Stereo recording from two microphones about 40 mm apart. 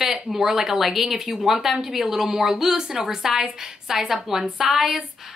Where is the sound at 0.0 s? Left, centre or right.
Right.